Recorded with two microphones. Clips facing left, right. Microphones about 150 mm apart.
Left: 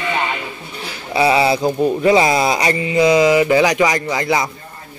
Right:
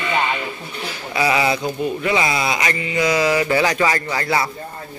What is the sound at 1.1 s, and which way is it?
Speech, 30° left (ahead or behind).